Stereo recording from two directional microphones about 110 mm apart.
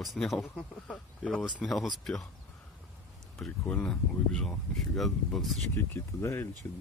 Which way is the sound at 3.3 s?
10° left (ahead or behind).